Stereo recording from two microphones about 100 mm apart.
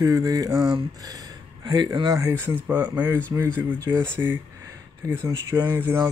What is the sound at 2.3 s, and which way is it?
Speech, 25° right (ahead or behind).